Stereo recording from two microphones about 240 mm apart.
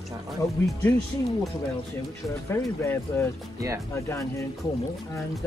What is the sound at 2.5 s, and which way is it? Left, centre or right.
Speech, centre.